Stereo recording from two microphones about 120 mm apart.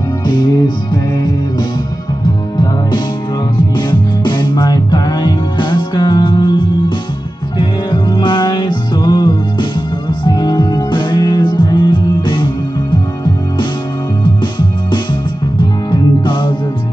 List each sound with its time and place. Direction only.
2.5 s music: 40° left (ahead or behind)
15.9 s music: 40° left (ahead or behind)